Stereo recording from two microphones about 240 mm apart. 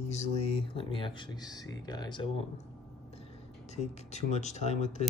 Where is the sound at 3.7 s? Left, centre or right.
Left.